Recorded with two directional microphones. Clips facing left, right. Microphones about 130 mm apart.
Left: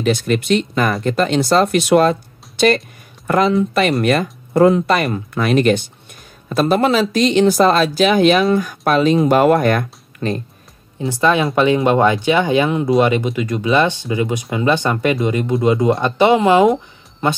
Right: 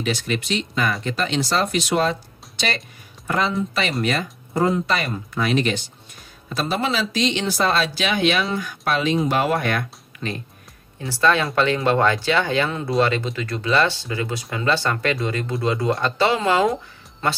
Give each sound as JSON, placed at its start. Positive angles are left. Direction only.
{"t": 0.0, "sound": "speech", "side_deg": 50}
{"t": 11.0, "sound": "speech", "side_deg": 20}